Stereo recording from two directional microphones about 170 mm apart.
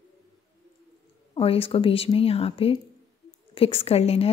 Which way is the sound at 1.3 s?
35° left (ahead or behind).